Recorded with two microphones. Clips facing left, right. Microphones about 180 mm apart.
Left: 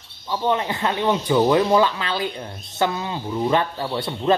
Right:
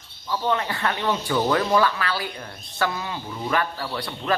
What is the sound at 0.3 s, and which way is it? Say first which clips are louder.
A man's voice: left 3 dB; 20° left (ahead or behind).